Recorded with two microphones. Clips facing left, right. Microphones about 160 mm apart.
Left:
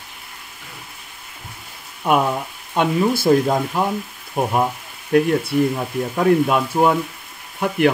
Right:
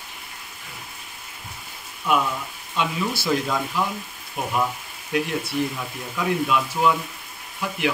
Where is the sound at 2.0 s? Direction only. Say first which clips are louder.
Left 5 dB; 50° left (ahead or behind).